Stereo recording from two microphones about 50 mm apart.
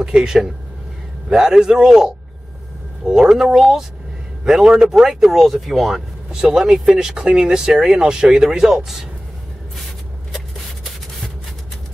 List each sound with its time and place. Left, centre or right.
0.0 s speech: centre